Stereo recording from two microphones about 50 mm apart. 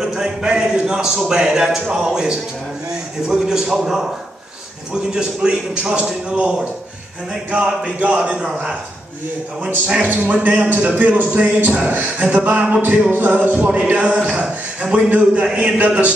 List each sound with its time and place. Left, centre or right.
0.0 s a sound: centre
0.8 s a man's voice: centre
5.1 s a man's voice: centre
10.0 s a man's voice: right